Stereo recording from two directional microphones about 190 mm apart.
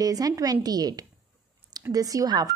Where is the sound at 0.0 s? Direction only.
20° right (ahead or behind).